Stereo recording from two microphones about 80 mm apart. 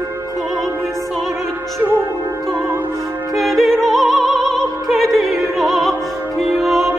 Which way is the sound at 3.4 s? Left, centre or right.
Centre.